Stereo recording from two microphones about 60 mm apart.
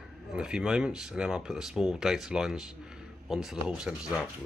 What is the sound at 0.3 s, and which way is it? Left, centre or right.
Speech, centre.